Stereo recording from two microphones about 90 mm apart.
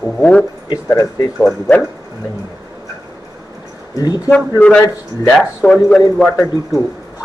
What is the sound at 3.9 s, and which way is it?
Speech, 50° left (ahead or behind).